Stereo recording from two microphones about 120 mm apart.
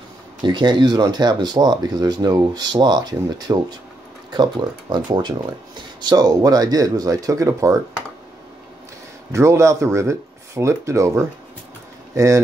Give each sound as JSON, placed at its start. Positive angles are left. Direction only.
{"t": 0.4, "sound": "speech", "side_deg": -40}
{"t": 9.3, "sound": "speech", "side_deg": -25}